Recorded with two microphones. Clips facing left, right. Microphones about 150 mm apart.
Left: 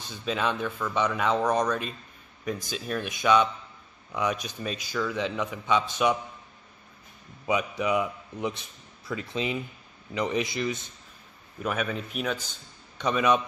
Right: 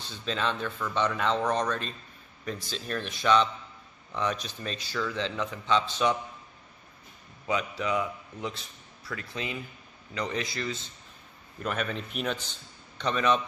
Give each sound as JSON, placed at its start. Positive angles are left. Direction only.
{"t": 0.0, "sound": "a man's voice", "side_deg": 10}
{"t": 7.4, "sound": "a man's voice", "side_deg": 15}
{"t": 11.6, "sound": "a man's voice", "side_deg": 5}